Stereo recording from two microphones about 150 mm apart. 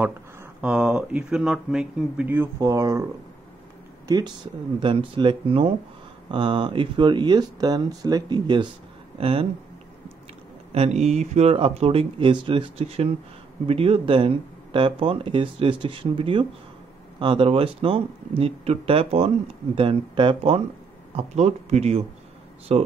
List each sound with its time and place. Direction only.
0.6 s speech: 5° right (ahead or behind)
4.7 s speech: 35° right (ahead or behind)
10.7 s speech: 45° right (ahead or behind)